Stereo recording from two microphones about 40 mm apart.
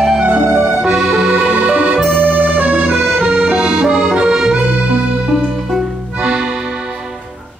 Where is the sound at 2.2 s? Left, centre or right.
Right.